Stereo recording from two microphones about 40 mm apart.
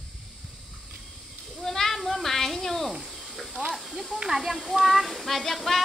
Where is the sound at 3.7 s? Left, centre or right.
Centre.